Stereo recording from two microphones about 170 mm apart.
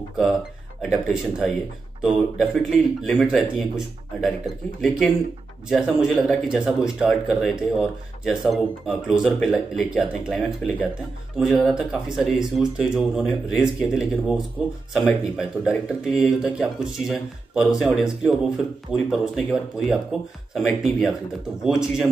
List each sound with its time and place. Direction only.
0.8 s speech: centre (ahead or behind)
5.7 s speech: 5° right (ahead or behind)